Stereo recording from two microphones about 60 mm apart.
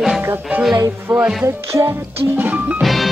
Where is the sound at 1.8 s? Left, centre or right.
Right.